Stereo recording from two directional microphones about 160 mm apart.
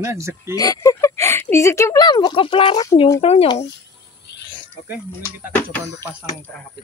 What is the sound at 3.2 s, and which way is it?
Speech, 40° left (ahead or behind).